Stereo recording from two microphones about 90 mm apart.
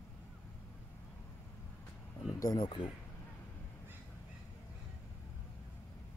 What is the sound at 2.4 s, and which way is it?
Speech, 45° left (ahead or behind).